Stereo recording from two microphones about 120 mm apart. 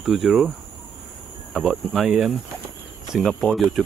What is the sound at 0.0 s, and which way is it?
Speech, centre (ahead or behind).